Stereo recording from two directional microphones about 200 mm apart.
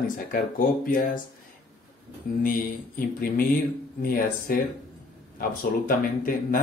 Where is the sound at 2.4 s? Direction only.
45° left (ahead or behind).